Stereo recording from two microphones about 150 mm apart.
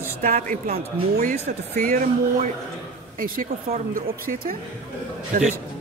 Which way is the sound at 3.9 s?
70° right (ahead or behind).